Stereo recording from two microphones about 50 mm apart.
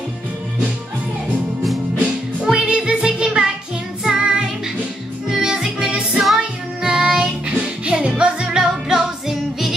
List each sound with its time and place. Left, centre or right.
2.4 s music: centre